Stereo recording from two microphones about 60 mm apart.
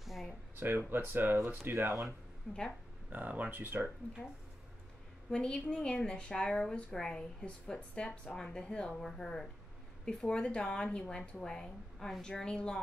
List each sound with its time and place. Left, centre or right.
0.0 s a sound: centre
0.6 s speech: right
3.1 s speech: right
5.3 s a woman's voice: centre